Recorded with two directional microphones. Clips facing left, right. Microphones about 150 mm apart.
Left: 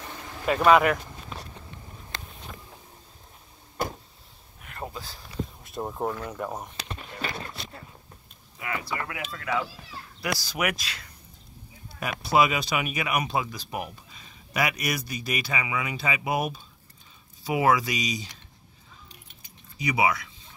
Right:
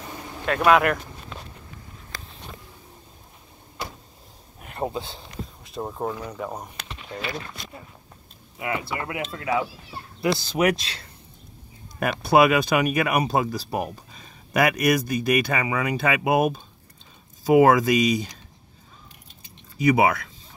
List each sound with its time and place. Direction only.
0.0 s vehicle: 15° right (ahead or behind)
0.5 s speech: centre (ahead or behind)
3.8 s power windows: 50° left (ahead or behind)
4.7 s speech: 30° right (ahead or behind)
5.6 s speech: centre (ahead or behind)
8.5 s speech: 25° right (ahead or behind)
11.9 s speech: 55° right (ahead or behind)
19.8 s speech: 50° right (ahead or behind)